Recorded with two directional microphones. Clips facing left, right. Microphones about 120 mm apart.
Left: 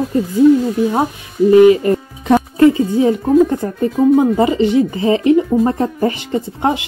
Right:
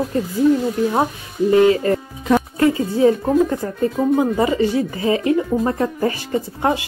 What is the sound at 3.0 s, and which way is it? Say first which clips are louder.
Speech: left 2 dB; 25° left (ahead or behind).